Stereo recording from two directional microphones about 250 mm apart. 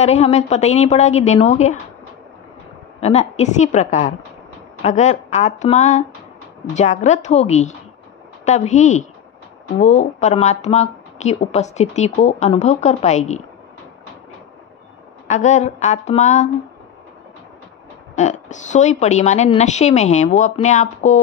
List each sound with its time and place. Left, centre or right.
0.0 s speech: left
3.0 s speech: left
15.2 s speech: left
18.1 s speech: left